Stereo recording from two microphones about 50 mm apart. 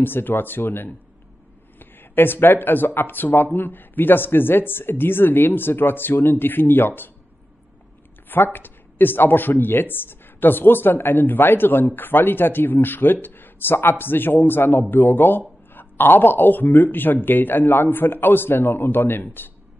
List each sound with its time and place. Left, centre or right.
0.0 s speech: left
8.3 s speech: left